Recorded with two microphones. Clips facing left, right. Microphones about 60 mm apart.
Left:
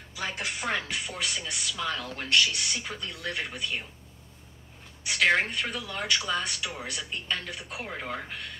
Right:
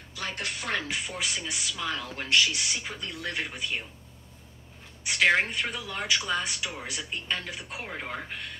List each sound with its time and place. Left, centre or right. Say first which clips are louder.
0.1 s music: left 1 dB; centre
0.8 s speech: right 1 dB; centre
5.0 s speech: right 1 dB; centre